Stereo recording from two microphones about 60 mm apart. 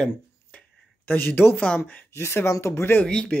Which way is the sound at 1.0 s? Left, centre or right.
Left.